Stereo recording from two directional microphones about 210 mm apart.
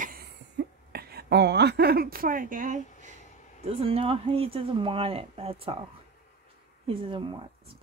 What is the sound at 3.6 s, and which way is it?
Speech, 25° right (ahead or behind).